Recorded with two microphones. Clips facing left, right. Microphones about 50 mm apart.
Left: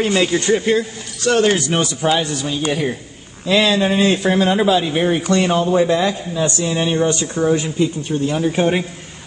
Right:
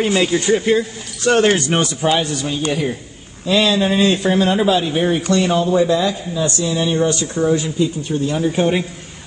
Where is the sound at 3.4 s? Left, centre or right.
Left.